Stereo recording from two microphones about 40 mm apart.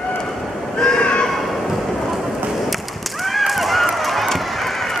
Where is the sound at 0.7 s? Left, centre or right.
Centre.